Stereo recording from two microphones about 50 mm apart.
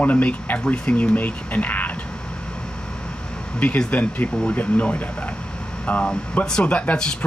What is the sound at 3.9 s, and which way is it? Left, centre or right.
Speech, left.